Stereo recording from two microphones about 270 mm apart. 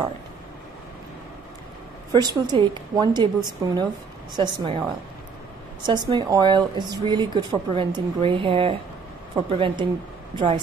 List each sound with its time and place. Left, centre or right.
2.1 s a woman's voice: centre
5.9 s a woman's voice: centre